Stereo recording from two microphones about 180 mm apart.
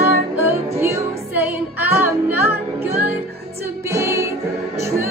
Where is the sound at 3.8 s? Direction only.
15° right (ahead or behind).